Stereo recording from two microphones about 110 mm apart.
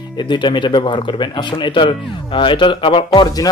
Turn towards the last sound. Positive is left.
turn(degrees=35)  # may be behind; listen again after turning